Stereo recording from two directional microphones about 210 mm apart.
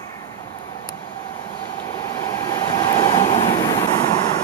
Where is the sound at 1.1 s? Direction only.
15° left (ahead or behind).